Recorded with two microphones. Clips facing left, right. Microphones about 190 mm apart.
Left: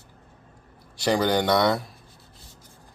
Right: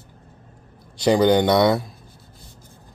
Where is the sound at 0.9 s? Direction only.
20° right (ahead or behind).